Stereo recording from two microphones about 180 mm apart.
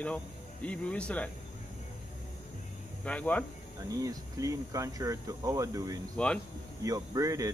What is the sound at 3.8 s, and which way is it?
Speech, 20° right (ahead or behind).